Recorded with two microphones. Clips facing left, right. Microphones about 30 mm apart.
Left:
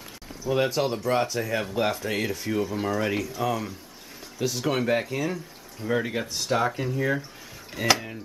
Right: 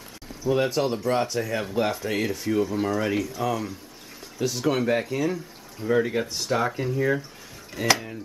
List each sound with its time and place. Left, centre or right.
0.4 s speech: centre